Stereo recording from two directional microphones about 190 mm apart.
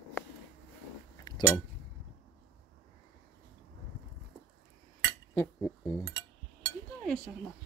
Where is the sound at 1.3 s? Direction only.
20° left (ahead or behind).